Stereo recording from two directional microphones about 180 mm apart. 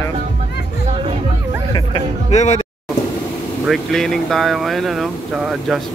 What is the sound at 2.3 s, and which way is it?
Speech, 40° left (ahead or behind).